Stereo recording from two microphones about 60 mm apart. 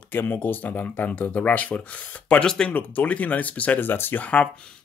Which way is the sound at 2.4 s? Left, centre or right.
Centre.